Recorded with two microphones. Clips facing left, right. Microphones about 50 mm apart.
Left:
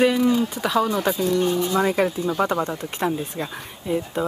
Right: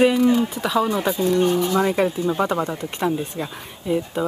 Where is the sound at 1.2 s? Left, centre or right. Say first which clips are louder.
Right 4 dB; right.